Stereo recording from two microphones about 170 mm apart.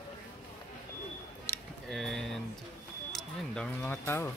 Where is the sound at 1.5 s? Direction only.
15° left (ahead or behind).